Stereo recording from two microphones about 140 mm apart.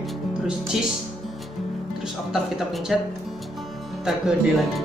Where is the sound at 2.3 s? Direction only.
Centre (ahead or behind).